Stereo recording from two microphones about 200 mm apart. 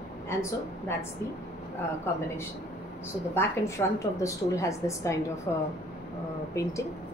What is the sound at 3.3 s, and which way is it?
A woman's voice, 15° left (ahead or behind).